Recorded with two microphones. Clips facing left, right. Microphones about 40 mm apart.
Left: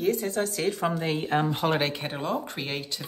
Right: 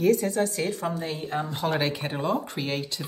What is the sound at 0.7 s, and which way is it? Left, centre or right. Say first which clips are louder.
Speech: left 3 dB; left.